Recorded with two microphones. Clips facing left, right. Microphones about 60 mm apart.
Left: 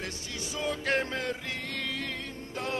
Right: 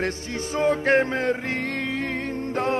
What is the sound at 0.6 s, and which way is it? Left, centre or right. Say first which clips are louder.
Music: right 10 dB; right.